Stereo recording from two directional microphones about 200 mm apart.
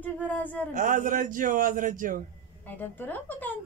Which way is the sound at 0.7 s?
40° right (ahead or behind).